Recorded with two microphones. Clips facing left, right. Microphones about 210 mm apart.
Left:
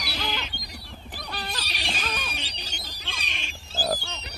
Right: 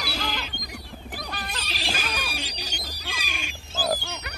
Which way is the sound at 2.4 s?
40° right (ahead or behind).